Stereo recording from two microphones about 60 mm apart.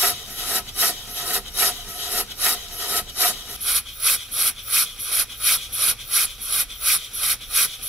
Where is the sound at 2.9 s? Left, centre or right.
Right.